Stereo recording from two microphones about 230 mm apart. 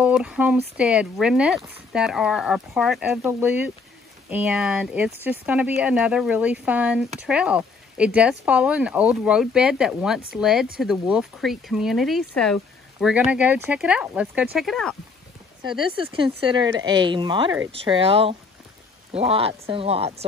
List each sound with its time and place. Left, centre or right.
0.0 s speech: centre
15.6 s a woman's voice: right